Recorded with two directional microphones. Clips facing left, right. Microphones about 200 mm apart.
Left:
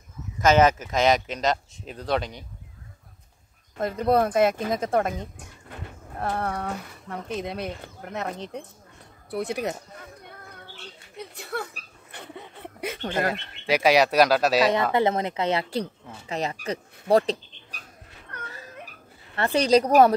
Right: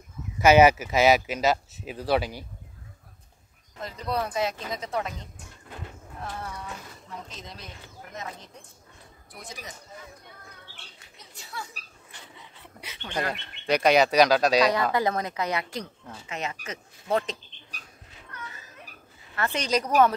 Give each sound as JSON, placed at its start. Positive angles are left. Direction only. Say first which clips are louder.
{"t": 0.4, "sound": "speech", "louder": "right 2 dB", "side_deg": -10}
{"t": 3.7, "sound": "speech", "louder": "left 9 dB", "side_deg": 55}
{"t": 11.1, "sound": "a sound", "louder": "left 8 dB", "side_deg": 60}
{"t": 13.3, "sound": "speech", "louder": "left 1 dB", "side_deg": 5}
{"t": 14.7, "sound": "speech", "louder": "left 3 dB", "side_deg": 25}
{"t": 19.3, "sound": "speech", "louder": "left 7 dB", "side_deg": 35}